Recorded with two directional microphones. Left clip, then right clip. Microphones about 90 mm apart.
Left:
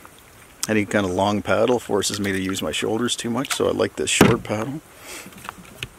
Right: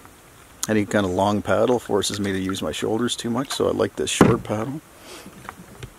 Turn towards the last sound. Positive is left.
turn(degrees=5)  # may be behind; listen again after turning